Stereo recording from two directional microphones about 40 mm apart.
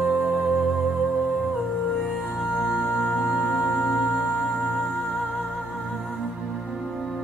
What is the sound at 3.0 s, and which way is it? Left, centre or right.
Music, centre.